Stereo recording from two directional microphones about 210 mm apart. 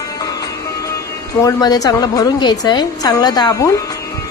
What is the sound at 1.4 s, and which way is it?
Speech, 20° left (ahead or behind).